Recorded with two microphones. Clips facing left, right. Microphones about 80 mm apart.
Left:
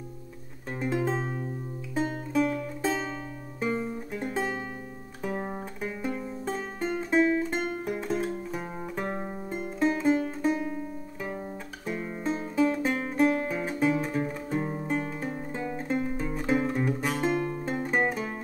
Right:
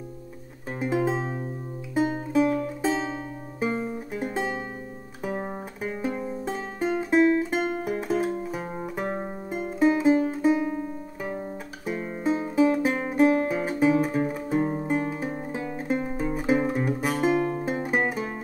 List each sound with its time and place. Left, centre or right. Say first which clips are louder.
0.7 s music: right 3 dB; centre
10.6 s music: right 5 dB; right
11.3 s music: right 3 dB; centre